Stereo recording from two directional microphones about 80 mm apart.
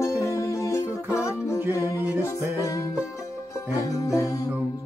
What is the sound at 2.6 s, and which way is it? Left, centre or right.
Music, left.